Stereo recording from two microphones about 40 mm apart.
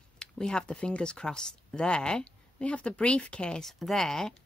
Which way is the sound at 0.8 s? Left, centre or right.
Left.